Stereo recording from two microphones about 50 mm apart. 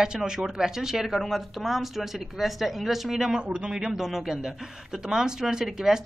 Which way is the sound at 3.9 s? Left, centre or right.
Centre.